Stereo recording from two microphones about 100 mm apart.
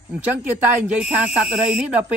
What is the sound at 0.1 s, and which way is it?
Speech, 15° right (ahead or behind).